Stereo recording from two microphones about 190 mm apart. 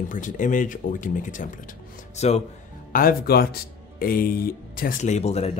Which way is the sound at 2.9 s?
50° left (ahead or behind).